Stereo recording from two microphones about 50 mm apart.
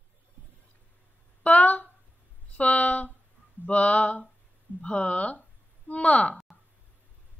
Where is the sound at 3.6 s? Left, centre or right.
Left.